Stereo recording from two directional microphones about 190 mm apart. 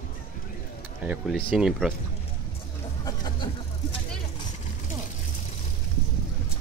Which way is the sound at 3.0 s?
20° left (ahead or behind).